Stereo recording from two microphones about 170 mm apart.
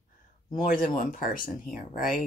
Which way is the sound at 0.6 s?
55° left (ahead or behind).